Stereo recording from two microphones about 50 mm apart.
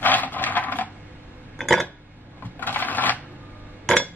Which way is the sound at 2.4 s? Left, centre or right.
Left.